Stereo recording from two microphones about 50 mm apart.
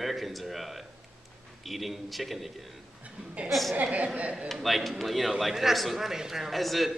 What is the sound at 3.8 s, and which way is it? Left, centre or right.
Speech, right.